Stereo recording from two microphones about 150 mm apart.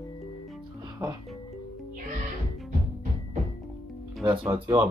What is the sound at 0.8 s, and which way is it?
Music, 30° right (ahead or behind).